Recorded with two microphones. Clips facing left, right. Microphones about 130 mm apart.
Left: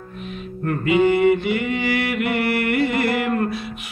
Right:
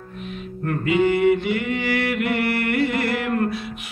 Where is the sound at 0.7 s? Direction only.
15° left (ahead or behind).